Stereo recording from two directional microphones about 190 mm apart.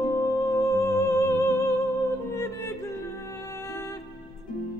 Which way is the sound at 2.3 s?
15° left (ahead or behind).